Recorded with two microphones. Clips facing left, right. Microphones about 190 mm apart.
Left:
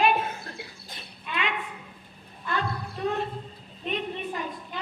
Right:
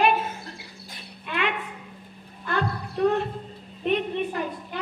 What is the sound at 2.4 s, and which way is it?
Wild animals, 60° right (ahead or behind).